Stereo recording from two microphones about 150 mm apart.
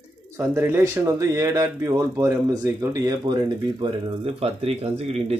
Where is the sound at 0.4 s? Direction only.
15° right (ahead or behind).